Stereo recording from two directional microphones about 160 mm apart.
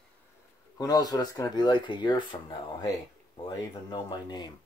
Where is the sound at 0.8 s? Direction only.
25° left (ahead or behind).